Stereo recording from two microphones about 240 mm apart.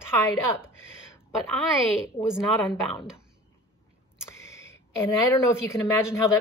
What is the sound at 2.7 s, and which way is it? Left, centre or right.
Speech, centre.